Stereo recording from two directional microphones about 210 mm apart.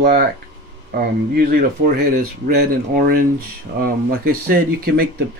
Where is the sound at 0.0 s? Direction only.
45° right (ahead or behind).